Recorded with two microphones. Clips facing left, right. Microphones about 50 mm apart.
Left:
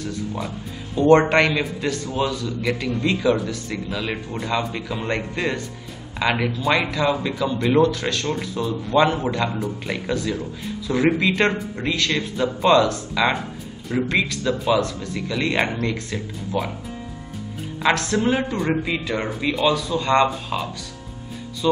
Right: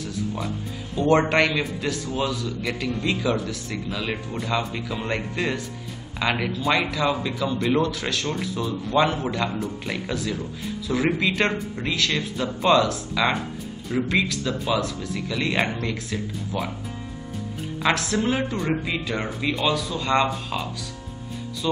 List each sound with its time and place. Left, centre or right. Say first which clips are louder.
0.9 s a man's voice: left 4 dB; centre
17.8 s a man's voice: left 3 dB; centre